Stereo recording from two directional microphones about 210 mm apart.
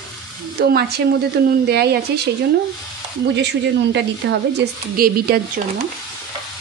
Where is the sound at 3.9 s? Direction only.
55° right (ahead or behind).